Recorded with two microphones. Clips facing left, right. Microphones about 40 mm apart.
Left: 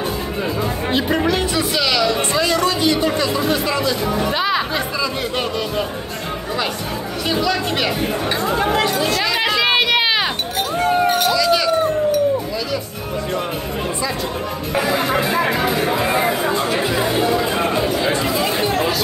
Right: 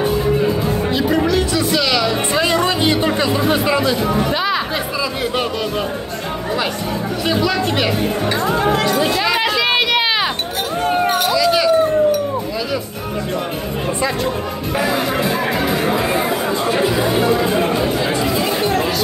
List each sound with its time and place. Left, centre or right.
1.1 s music: left
1.8 s speech: centre
2.3 s speech: centre
4.3 s speech: centre
7.2 s speech: centre
8.9 s speech: centre
9.4 s run: centre
11.1 s a sound: centre
15.0 s speech: centre
16.0 s chatter: centre
18.4 s chatter: centre